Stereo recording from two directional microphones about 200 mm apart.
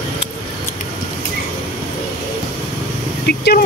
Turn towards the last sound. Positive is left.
turn(degrees=50)  # may be behind; listen again after turning